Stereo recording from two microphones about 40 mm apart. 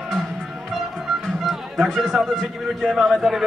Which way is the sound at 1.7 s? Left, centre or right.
Centre.